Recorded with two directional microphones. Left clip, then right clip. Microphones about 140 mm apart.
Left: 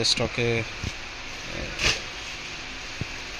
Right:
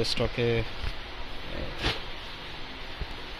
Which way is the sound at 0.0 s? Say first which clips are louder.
Left 4 dB; 10° left (ahead or behind).